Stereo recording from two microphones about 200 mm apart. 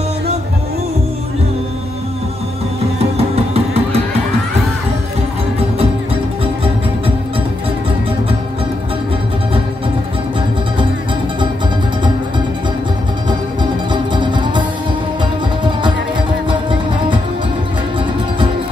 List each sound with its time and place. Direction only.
3.0 s music: 30° right (ahead or behind)
14.1 s music: 25° right (ahead or behind)